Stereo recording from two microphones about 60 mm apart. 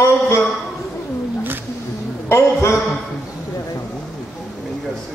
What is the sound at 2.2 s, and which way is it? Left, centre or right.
Speech, left.